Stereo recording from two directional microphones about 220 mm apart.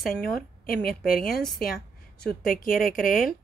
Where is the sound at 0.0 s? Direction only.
Centre (ahead or behind).